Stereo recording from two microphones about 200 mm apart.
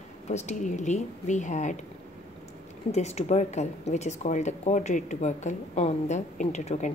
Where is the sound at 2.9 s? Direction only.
35° left (ahead or behind).